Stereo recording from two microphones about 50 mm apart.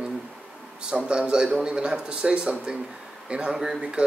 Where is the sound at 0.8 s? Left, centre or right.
Centre.